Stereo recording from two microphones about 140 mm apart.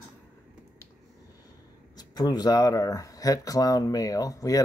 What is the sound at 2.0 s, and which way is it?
Speech, 30° left (ahead or behind).